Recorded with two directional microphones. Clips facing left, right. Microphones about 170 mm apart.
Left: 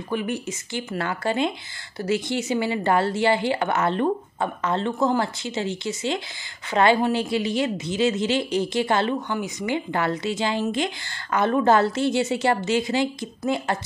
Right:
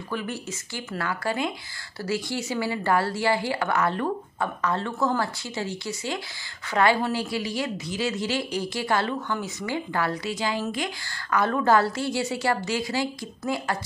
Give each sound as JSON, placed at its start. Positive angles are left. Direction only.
{"t": 0.1, "sound": "a woman's voice", "side_deg": 20}